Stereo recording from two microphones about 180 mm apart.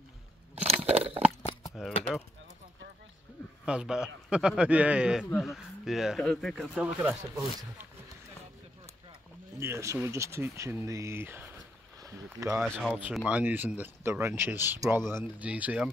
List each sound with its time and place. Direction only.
0.8 s a sound: 35° right (ahead or behind)
1.8 s mechanisms: centre (ahead or behind)
3.6 s speech: 5° right (ahead or behind)
9.6 s speech: 15° right (ahead or behind)
12.8 s speech: centre (ahead or behind)